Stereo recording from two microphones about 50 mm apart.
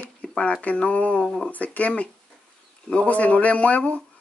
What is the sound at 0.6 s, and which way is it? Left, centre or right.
Speech, left.